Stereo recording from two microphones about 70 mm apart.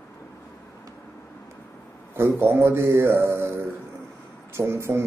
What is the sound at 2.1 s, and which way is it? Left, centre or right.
A man's voice, right.